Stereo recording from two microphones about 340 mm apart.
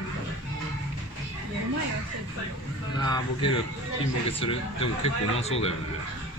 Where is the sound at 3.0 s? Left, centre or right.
Centre.